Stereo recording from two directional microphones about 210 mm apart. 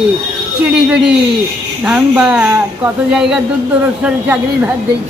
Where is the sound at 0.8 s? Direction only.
5° right (ahead or behind).